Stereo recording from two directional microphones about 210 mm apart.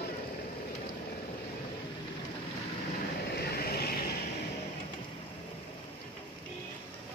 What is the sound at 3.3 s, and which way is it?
Vehicle, 50° left (ahead or behind).